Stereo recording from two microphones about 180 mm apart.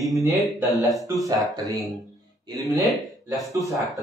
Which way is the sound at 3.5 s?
15° right (ahead or behind).